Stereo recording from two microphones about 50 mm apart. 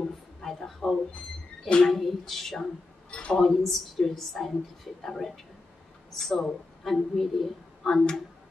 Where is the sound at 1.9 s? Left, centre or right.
Centre.